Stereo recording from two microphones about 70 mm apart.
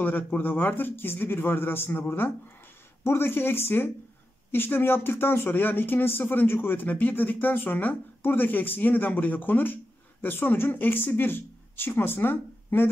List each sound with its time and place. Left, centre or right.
0.0 s speech: left